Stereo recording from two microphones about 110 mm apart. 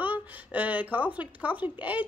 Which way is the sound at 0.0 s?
15° right (ahead or behind).